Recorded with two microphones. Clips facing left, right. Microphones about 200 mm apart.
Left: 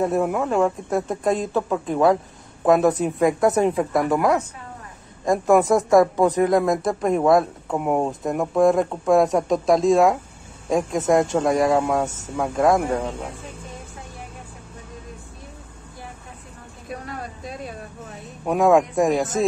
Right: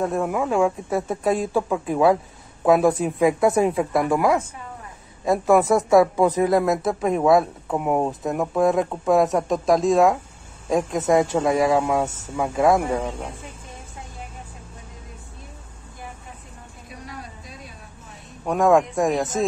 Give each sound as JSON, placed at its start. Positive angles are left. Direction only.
{"t": 0.0, "sound": "speech", "side_deg": 5}
{"t": 0.4, "sound": "speech", "side_deg": -5}
{"t": 16.9, "sound": "a sound", "side_deg": 55}
{"t": 18.4, "sound": "speech", "side_deg": 5}